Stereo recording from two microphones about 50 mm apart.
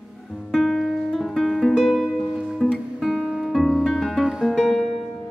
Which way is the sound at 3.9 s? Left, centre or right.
Centre.